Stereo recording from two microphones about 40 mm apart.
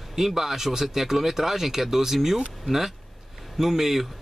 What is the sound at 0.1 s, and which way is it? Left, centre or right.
Speech, centre.